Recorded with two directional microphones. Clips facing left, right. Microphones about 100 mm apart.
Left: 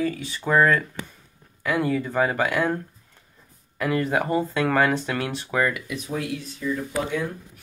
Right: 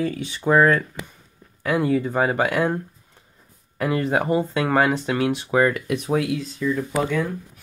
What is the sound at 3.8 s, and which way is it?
Speech, 25° right (ahead or behind).